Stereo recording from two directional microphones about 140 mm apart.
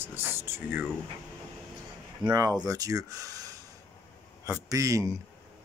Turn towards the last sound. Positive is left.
turn(degrees=-25)  # may be behind; listen again after turning